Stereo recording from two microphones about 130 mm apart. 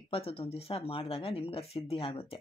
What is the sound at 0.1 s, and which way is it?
Speech, 45° left (ahead or behind).